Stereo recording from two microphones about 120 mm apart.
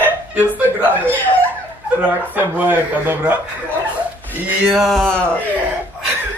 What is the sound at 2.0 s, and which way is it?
Speech, 15° right (ahead or behind).